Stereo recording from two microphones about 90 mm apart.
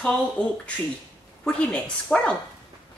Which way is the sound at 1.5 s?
15° left (ahead or behind).